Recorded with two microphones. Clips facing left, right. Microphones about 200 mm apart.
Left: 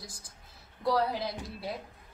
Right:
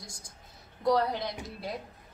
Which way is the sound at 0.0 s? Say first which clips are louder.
Even; 5° left (ahead or behind).